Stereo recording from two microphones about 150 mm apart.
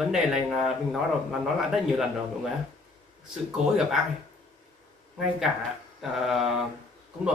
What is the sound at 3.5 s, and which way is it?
Speech, centre (ahead or behind).